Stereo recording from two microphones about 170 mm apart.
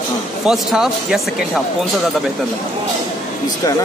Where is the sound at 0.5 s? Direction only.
5° right (ahead or behind).